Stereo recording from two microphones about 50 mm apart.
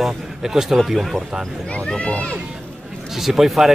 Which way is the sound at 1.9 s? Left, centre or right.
Left.